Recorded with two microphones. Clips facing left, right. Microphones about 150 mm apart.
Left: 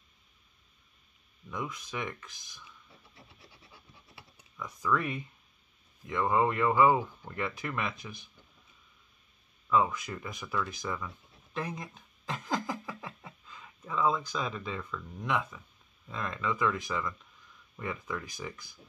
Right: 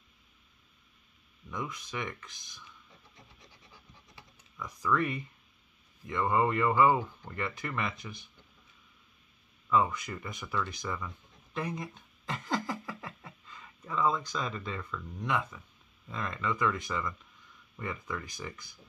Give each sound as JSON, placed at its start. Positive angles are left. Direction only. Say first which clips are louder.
{"t": 1.5, "sound": "speech", "louder": "left 1 dB", "side_deg": 0}
{"t": 4.6, "sound": "speech", "louder": "right 1 dB", "side_deg": 0}
{"t": 9.7, "sound": "speech", "louder": "even", "side_deg": 0}
{"t": 11.5, "sound": "a sound", "louder": "right 1 dB", "side_deg": 0}
{"t": 16.1, "sound": "speech", "louder": "even", "side_deg": 0}